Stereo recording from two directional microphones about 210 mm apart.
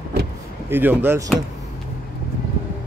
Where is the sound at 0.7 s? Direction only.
10° right (ahead or behind).